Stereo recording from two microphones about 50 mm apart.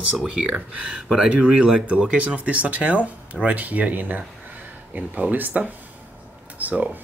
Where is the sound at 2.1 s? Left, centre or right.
Right.